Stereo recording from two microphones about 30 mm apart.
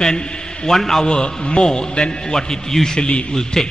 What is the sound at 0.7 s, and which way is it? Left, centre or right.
Speech, centre.